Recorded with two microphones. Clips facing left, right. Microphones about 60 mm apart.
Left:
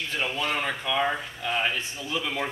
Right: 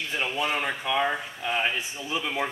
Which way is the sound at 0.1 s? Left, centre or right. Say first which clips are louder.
Right 1 dB; centre.